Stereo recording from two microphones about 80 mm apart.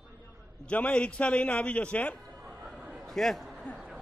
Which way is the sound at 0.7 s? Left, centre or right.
Centre.